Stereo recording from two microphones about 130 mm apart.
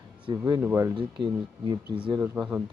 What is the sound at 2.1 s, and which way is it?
Speech, 20° right (ahead or behind).